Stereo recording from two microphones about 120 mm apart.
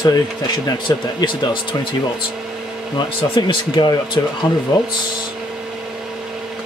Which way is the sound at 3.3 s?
45° left (ahead or behind).